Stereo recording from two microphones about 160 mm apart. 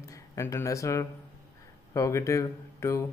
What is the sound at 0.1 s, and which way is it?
Speech, 20° left (ahead or behind).